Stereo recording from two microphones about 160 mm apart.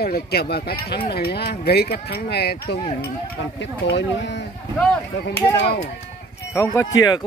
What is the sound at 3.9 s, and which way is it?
Speech, 90° left.